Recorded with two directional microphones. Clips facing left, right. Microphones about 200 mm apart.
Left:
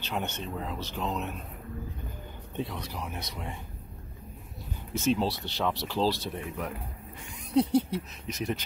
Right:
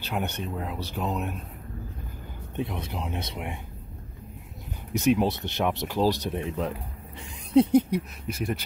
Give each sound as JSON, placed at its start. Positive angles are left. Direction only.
{"t": 0.1, "sound": "speech", "side_deg": -10}
{"t": 2.5, "sound": "speech", "side_deg": -20}
{"t": 4.9, "sound": "speech", "side_deg": -15}